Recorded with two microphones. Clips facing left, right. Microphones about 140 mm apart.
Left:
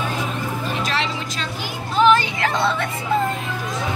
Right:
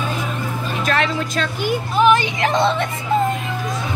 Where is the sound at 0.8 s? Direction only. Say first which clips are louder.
Right 9 dB; 50° right (ahead or behind).